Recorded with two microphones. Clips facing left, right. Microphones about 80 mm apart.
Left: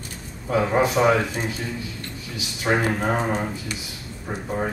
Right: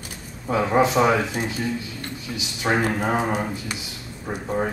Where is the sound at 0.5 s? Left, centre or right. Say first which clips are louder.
Right 1 dB; centre.